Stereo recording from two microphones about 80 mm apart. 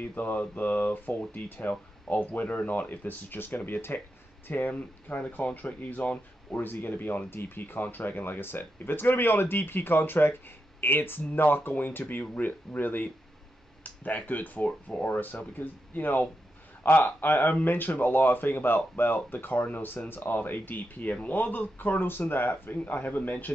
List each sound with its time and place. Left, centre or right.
0.0 s speech: left